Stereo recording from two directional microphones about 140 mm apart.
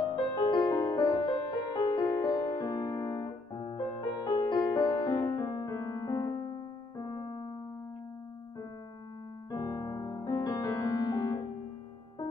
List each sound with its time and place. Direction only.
0.0 s music: 30° left (ahead or behind)
9.5 s music: 30° left (ahead or behind)